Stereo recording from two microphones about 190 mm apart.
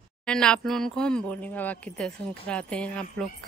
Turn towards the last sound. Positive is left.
turn(degrees=5)  # may be behind; listen again after turning